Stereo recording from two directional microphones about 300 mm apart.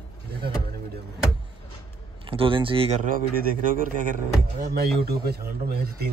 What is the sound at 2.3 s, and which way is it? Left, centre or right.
Speech, centre.